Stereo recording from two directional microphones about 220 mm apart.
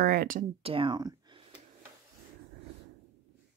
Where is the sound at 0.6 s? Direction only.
25° right (ahead or behind).